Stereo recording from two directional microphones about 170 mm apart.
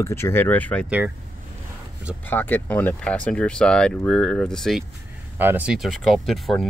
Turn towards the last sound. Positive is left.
turn(degrees=0)  # may be behind; listen again after turning